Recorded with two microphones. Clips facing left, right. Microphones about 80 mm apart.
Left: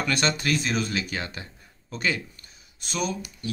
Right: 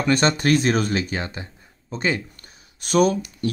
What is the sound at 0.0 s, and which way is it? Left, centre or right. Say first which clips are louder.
Speech: right 6 dB; right.